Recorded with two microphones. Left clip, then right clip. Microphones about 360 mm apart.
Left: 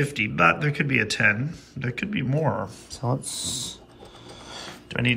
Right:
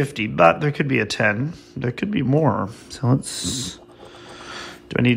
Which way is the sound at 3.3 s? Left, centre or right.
Right.